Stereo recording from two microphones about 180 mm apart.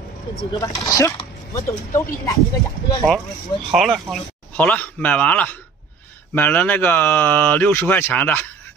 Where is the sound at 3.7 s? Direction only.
Centre (ahead or behind).